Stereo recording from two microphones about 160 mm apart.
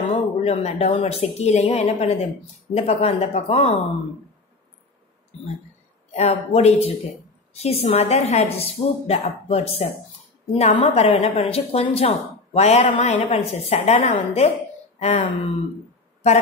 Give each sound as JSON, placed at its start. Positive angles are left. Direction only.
{"t": 0.4, "sound": "a woman's voice", "side_deg": 40}
{"t": 6.1, "sound": "a woman's voice", "side_deg": 40}